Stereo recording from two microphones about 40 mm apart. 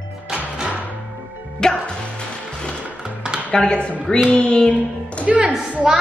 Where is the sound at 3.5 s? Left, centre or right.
Left.